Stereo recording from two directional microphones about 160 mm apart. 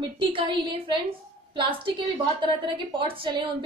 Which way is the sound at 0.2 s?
30° right (ahead or behind).